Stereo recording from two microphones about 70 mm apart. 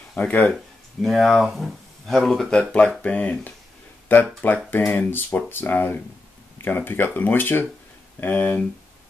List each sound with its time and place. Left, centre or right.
0.1 s speech: left
1.0 s speech: centre
2.5 s speech: centre